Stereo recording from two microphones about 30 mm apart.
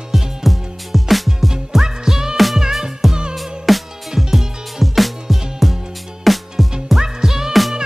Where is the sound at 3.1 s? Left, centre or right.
Right.